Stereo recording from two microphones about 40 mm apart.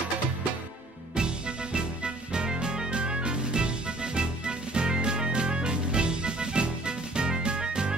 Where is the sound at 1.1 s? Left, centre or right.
Right.